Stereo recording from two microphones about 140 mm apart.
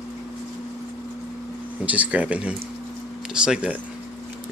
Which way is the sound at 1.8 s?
10° right (ahead or behind).